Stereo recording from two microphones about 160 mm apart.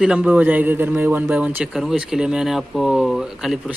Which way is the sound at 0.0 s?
5° right (ahead or behind).